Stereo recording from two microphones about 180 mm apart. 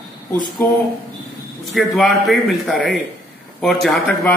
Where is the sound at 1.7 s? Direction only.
Centre (ahead or behind).